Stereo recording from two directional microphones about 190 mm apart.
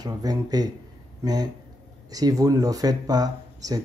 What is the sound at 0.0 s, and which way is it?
Speech, 20° right (ahead or behind).